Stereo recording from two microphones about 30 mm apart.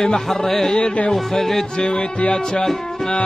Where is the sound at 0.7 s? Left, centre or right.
Left.